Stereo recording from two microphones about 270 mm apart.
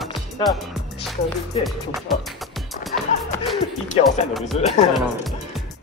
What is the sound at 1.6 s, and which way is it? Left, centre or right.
Speech, centre.